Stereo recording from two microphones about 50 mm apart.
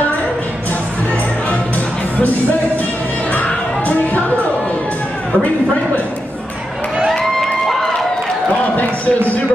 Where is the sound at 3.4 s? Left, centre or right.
Left.